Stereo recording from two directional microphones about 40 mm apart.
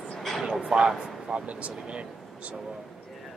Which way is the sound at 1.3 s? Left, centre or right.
Right.